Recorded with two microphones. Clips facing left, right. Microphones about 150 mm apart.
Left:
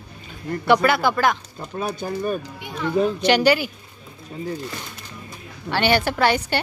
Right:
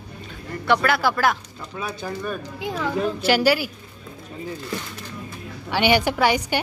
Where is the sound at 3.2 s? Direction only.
5° right (ahead or behind).